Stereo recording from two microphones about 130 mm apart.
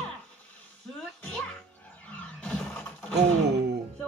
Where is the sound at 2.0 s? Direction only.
10° left (ahead or behind).